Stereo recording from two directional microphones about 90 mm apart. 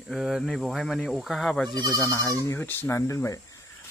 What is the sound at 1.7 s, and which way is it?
Speech, 45° right (ahead or behind).